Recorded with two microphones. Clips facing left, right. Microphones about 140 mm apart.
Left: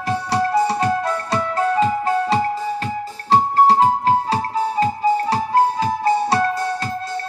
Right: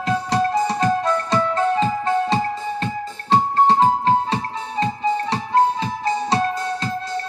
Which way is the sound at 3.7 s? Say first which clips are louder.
Left 1 dB; 30° right (ahead or behind).